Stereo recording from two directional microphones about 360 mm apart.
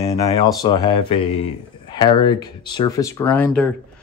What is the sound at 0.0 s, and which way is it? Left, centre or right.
Speech, centre.